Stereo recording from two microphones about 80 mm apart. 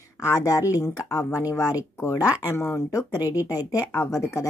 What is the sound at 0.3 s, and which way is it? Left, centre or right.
Speech, left.